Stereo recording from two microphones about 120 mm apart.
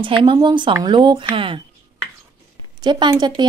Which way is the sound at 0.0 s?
45° right (ahead or behind).